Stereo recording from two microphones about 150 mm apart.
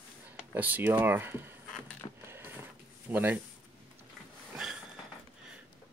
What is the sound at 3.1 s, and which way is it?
Speech, 15° right (ahead or behind).